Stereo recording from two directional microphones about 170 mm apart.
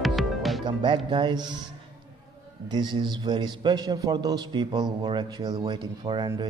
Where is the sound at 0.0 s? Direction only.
Centre (ahead or behind).